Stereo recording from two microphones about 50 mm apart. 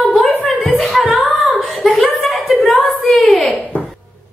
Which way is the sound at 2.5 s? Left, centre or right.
Left.